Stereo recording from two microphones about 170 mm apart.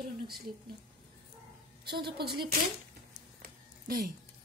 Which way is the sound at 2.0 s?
70° right (ahead or behind).